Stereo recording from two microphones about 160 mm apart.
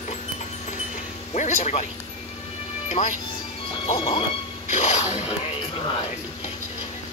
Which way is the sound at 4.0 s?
30° left (ahead or behind).